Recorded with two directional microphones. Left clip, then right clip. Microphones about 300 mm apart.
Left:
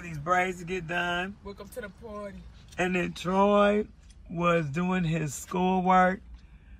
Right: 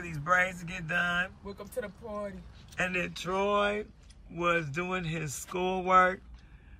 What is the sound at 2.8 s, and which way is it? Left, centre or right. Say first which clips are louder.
Speech: left 2 dB; centre.